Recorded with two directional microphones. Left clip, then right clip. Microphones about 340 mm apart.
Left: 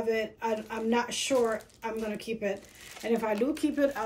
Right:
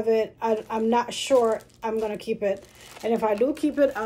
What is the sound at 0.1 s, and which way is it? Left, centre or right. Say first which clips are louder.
Speech: right 8 dB; centre.